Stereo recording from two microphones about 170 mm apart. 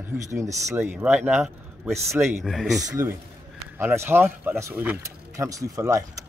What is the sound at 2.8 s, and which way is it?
A man's voice, 15° right (ahead or behind).